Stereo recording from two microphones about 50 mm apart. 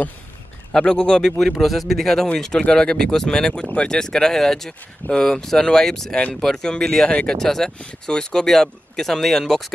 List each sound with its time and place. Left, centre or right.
0.7 s speech: centre
1.6 s speech: centre
7.3 s speech: centre